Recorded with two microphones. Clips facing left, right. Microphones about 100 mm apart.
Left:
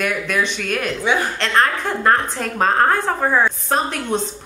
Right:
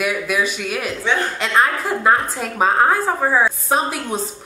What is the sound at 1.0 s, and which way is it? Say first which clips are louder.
Speech: left 1 dB; 10° left (ahead or behind).